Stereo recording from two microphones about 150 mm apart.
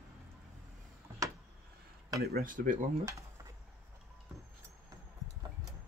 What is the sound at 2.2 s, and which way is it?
Speech, 80° right.